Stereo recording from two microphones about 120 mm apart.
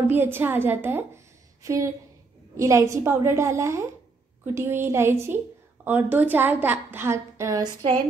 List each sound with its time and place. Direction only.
0.1 s a woman's voice: 20° right (ahead or behind)